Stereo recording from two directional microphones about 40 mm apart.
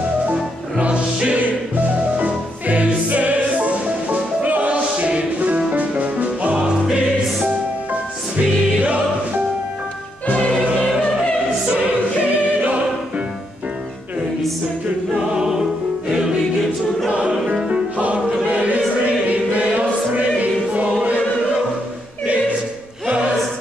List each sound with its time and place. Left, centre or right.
0.7 s music: right
8.4 s music: right
10.3 s music: left
10.7 s music: centre
11.7 s choir: right
15.1 s music: centre
17.1 s music: right
19.0 s choir: right
23.0 s music: right